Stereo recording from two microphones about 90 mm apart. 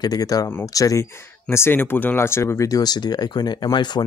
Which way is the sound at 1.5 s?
25° left (ahead or behind).